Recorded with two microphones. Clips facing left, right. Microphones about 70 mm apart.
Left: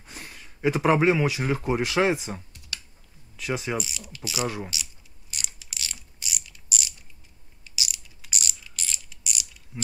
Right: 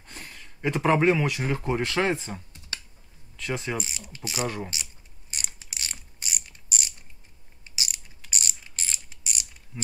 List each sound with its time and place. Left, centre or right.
0.0 s speech: centre
2.7 s computer keyboard: right
3.3 s speech: centre
3.8 s speech: right
4.7 s a sound: right
5.3 s mechanisms: right